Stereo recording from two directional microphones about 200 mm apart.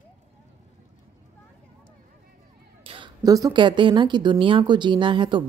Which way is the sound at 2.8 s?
25° right (ahead or behind).